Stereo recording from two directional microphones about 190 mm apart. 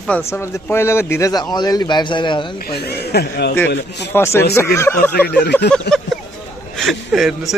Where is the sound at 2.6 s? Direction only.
55° left (ahead or behind).